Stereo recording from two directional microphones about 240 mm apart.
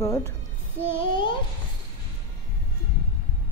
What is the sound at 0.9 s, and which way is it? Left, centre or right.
Child singing, left.